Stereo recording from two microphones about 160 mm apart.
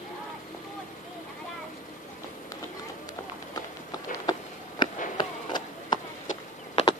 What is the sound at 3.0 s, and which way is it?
Run, 25° left (ahead or behind).